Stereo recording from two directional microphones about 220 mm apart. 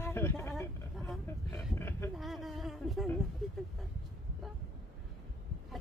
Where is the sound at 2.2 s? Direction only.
Centre (ahead or behind).